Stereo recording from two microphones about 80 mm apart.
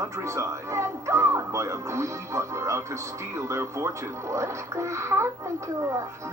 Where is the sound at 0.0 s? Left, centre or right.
Right.